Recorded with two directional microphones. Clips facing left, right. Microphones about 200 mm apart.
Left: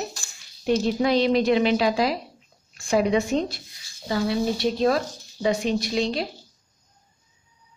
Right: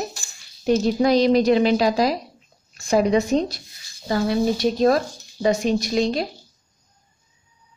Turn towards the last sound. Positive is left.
turn(degrees=-45)  # may be behind; listen again after turning